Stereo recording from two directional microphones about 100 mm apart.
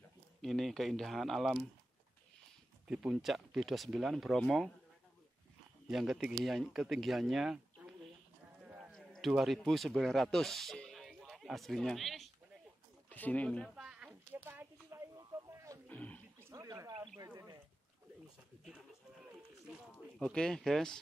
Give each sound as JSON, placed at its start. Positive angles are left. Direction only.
{"t": 0.4, "sound": "speech", "side_deg": 0}
{"t": 2.9, "sound": "speech", "side_deg": -10}
{"t": 5.9, "sound": "speech", "side_deg": -5}
{"t": 8.5, "sound": "a sound", "side_deg": -15}
{"t": 8.9, "sound": "speech", "side_deg": 0}
{"t": 13.1, "sound": "speech", "side_deg": 15}
{"t": 13.7, "sound": "a sound", "side_deg": -10}
{"t": 14.9, "sound": "a sound", "side_deg": -35}
{"t": 15.9, "sound": "roaring cats", "side_deg": 15}
{"t": 16.5, "sound": "wild animals", "side_deg": -35}
{"t": 17.2, "sound": "a sound", "side_deg": -35}
{"t": 20.2, "sound": "speech", "side_deg": 10}